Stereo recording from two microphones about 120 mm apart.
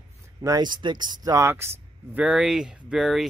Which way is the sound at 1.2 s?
25° right (ahead or behind).